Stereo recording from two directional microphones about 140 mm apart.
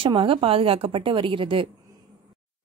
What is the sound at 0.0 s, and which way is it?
A woman's voice, 40° right (ahead or behind).